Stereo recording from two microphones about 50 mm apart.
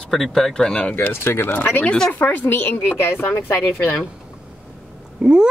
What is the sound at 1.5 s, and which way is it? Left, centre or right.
Speech, left.